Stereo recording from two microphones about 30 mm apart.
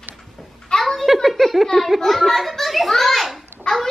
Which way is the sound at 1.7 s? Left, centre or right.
Centre.